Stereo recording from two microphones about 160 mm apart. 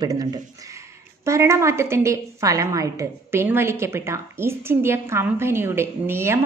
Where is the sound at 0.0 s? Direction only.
25° right (ahead or behind).